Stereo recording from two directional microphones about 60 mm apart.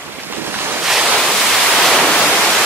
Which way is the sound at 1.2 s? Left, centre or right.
Centre.